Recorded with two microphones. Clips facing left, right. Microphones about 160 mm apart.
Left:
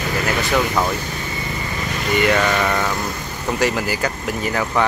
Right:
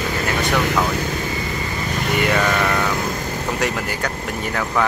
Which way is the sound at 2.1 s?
Centre (ahead or behind).